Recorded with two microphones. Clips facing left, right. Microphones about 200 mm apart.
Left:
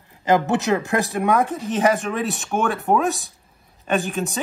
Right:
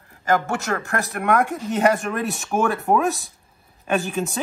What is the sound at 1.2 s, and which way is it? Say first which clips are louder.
Speech: right 2 dB; centre (ahead or behind).